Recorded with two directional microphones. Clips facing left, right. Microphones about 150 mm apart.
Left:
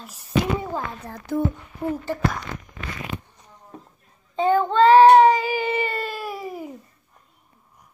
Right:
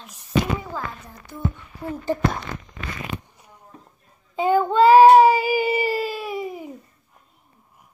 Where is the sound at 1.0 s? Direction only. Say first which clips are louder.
Left 13 dB; 85° left.